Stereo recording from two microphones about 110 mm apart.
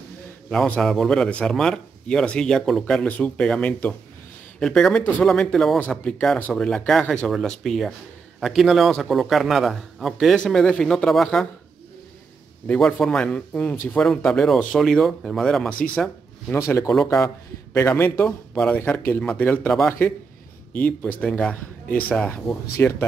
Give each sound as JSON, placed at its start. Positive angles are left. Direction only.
{"t": 0.5, "sound": "a man's voice", "side_deg": 10}
{"t": 12.6, "sound": "speech", "side_deg": 10}
{"t": 15.8, "sound": "speech", "side_deg": 10}
{"t": 16.5, "sound": "a man's voice", "side_deg": 25}
{"t": 16.9, "sound": "a man's voice", "side_deg": 0}
{"t": 17.7, "sound": "a man's voice", "side_deg": 25}
{"t": 20.7, "sound": "speech", "side_deg": 15}